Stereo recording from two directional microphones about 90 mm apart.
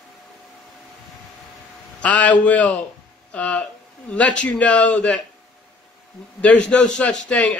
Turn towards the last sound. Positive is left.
turn(degrees=10)  # may be behind; listen again after turning